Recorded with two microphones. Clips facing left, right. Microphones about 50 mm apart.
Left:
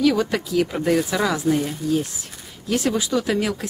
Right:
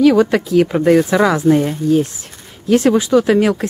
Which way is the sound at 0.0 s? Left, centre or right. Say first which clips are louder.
Right 8 dB; right.